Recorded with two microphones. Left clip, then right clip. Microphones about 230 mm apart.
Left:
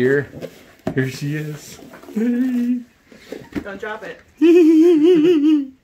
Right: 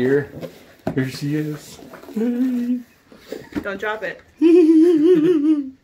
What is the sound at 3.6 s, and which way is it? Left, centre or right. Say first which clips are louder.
Speech: right 8 dB; right.